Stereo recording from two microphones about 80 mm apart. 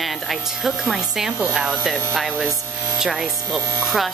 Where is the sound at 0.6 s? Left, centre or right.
Centre.